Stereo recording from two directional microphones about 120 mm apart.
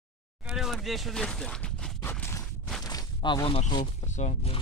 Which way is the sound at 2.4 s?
5° left (ahead or behind).